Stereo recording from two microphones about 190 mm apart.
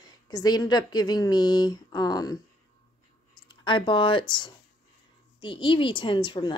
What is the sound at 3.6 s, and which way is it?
A woman's voice, 25° left (ahead or behind).